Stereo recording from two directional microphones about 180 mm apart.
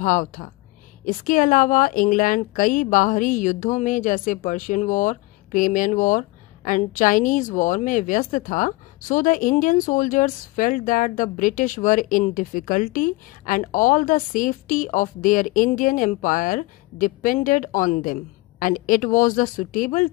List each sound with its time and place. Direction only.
0.0 s a woman's voice: 45° left (ahead or behind)